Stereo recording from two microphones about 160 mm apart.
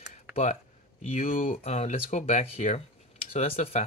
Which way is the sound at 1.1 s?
60° left (ahead or behind).